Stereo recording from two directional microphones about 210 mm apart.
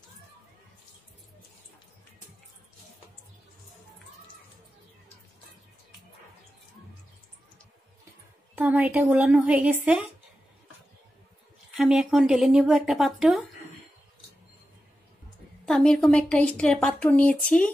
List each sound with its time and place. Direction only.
8.5 s speech: 10° right (ahead or behind)
11.7 s a woman's voice: centre (ahead or behind)
15.6 s a woman's voice: centre (ahead or behind)